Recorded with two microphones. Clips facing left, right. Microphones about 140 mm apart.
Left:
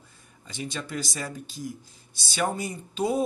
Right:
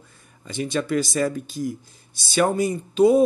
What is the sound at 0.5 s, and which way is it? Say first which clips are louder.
Speech: right 10 dB; 65° right (ahead or behind).